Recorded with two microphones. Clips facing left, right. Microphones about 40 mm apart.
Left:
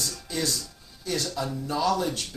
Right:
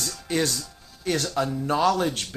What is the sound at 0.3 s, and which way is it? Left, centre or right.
Speech, right.